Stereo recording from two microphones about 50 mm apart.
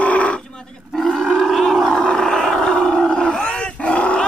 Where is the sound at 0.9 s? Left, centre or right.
Centre.